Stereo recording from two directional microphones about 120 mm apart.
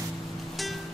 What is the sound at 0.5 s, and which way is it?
Music, centre (ahead or behind).